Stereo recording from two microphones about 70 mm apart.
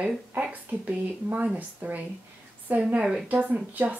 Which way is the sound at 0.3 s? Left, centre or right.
Right.